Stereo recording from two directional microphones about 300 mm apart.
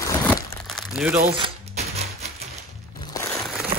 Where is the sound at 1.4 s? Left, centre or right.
Right.